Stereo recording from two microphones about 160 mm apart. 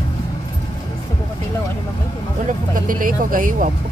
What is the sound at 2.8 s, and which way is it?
Speech, 60° right (ahead or behind).